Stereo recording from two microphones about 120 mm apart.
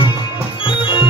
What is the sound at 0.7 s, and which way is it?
Organ, 45° left (ahead or behind).